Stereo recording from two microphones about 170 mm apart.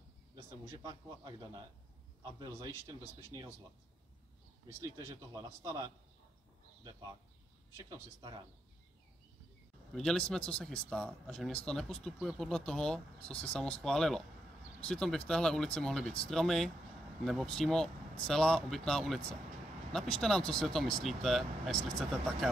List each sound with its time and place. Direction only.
0.7 s a man's voice: 20° right (ahead or behind)
5.6 s a man's voice: 20° right (ahead or behind)
7.7 s a man's voice: 25° right (ahead or behind)
9.9 s speech: 5° left (ahead or behind)